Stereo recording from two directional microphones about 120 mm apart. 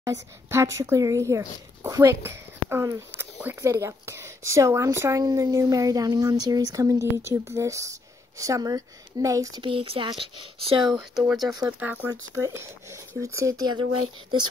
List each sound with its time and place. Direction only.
0.0 s a woman's voice: 25° right (ahead or behind)
9.6 s speech: 50° right (ahead or behind)
10.9 s speech: centre (ahead or behind)
11.6 s speech: 15° right (ahead or behind)
12.1 s a woman's voice: 30° right (ahead or behind)